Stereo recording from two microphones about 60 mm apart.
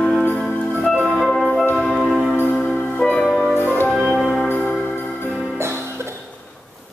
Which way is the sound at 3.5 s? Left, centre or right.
Left.